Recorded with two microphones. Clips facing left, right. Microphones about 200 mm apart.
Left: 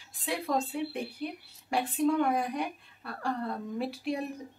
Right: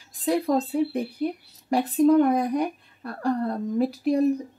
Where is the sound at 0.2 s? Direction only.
40° right (ahead or behind).